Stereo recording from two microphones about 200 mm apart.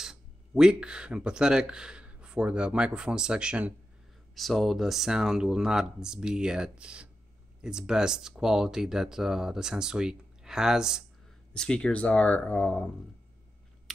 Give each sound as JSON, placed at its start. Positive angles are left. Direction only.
{"t": 0.0, "sound": "speech", "side_deg": -5}
{"t": 13.9, "sound": "typing", "side_deg": 0}